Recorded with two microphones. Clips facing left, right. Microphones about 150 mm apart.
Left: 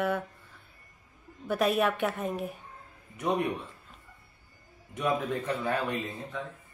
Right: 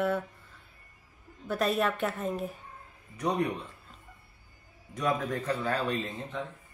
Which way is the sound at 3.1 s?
20° left (ahead or behind).